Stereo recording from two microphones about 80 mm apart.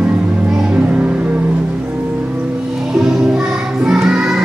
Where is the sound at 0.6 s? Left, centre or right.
Centre.